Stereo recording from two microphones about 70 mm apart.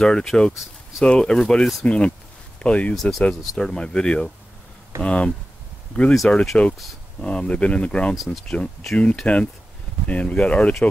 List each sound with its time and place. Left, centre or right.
0.0 s speech: centre
3.0 s speech: centre
8.1 s speech: centre
8.5 s speech: centre